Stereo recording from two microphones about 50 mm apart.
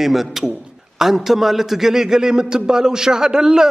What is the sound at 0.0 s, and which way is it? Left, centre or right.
A man's voice, centre.